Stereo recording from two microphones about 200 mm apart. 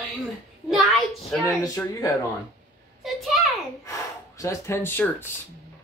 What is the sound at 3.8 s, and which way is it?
Gasp, 15° left (ahead or behind).